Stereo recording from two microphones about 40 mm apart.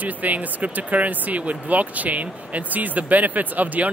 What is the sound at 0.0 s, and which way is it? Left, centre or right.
Speech, right.